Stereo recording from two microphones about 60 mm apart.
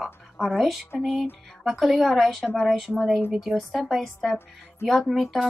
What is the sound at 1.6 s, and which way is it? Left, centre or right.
Speech, centre.